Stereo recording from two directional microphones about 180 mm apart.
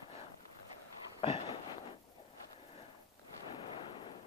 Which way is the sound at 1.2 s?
35° left (ahead or behind).